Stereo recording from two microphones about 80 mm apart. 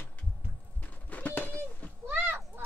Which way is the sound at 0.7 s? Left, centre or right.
Left.